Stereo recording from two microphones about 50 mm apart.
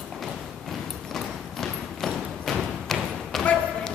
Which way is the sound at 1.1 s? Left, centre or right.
Centre.